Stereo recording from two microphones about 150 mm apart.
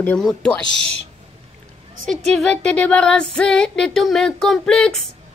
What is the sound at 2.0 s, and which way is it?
Speech, 5° left (ahead or behind).